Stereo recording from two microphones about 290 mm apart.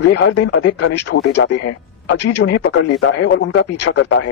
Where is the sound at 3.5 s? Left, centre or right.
Left.